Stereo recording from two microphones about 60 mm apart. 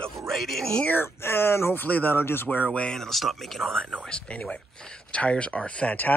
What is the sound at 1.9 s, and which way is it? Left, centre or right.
Speech, left.